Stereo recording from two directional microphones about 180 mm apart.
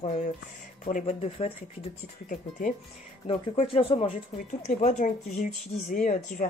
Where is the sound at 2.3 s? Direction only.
50° left (ahead or behind).